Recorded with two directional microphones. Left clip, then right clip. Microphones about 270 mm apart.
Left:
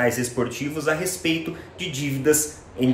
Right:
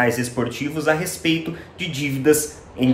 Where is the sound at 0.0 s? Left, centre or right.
Centre.